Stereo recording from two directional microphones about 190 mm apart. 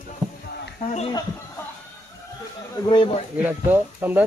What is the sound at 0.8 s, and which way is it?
Speech, 35° left (ahead or behind).